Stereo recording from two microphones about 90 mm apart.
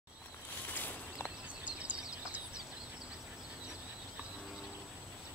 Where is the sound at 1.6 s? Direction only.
15° right (ahead or behind).